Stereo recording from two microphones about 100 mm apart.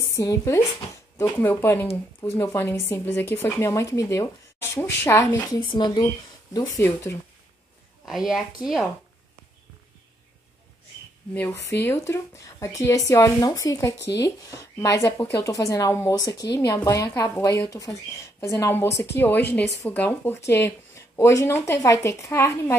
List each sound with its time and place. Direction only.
0.1 s speech: 30° left (ahead or behind)
5.5 s speech: 45° left (ahead or behind)
8.0 s a woman's voice: 5° right (ahead or behind)
11.3 s speech: 25° left (ahead or behind)